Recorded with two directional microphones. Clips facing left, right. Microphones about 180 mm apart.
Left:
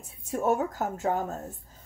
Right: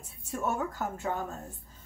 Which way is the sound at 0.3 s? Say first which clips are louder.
Left 6 dB; 40° left (ahead or behind).